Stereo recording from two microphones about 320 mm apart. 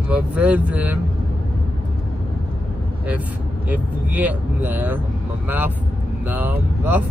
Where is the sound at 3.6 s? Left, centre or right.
Centre.